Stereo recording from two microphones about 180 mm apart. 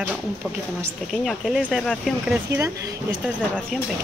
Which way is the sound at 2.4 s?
15° right (ahead or behind).